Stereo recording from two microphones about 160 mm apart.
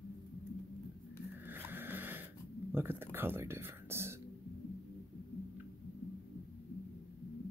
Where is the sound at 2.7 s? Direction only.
15° right (ahead or behind).